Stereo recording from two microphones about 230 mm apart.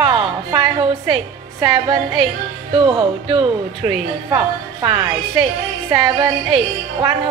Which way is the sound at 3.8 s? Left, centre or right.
Centre.